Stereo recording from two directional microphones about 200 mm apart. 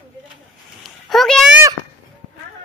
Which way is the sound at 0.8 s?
Centre (ahead or behind).